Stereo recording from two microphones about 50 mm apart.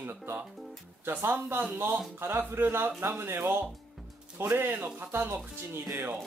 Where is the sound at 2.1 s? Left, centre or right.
Right.